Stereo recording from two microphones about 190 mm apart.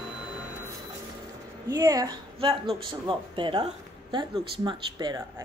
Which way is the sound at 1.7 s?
20° right (ahead or behind).